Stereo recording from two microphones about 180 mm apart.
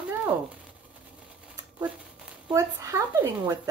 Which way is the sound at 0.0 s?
5° right (ahead or behind).